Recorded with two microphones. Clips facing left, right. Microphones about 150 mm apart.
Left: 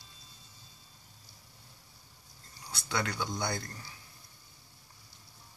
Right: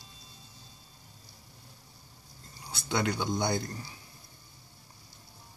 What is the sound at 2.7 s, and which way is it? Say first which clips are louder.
Speech: right 4 dB; 20° right (ahead or behind).